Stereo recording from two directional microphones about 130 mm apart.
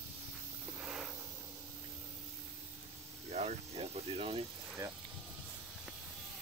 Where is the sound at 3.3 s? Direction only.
55° right (ahead or behind).